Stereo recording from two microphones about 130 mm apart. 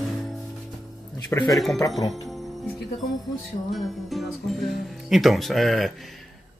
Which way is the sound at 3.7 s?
Centre (ahead or behind).